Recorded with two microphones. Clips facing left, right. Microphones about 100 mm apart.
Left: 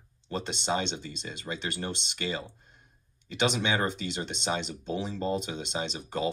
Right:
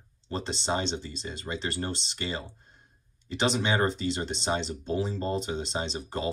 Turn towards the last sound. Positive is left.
turn(degrees=-40)  # may be behind; listen again after turning